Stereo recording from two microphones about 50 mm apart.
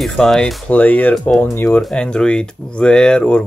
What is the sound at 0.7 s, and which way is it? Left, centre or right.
Speech, left.